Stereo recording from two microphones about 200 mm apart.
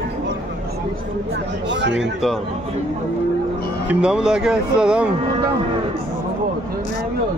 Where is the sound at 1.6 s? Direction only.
65° right (ahead or behind).